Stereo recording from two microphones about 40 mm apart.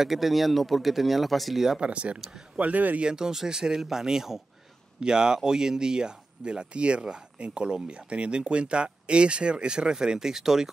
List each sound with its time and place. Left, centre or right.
0.0 s speech: centre
1.8 s speech: right
2.6 s speech: right
3.0 s speech: centre